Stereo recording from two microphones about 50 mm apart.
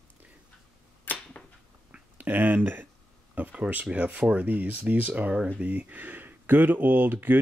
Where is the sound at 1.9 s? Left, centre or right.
Right.